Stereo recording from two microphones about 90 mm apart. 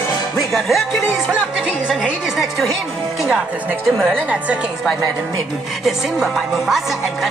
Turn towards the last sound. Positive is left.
turn(degrees=0)  # may be behind; listen again after turning